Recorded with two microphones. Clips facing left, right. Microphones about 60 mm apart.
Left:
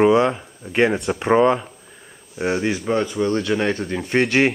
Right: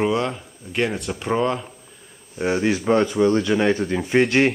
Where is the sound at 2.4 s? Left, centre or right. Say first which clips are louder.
Right 1 dB; centre.